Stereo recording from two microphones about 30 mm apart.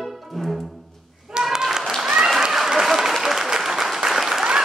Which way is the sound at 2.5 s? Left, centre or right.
Centre.